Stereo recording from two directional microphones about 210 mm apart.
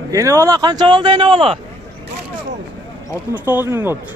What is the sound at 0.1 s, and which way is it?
A man's voice, 15° right (ahead or behind).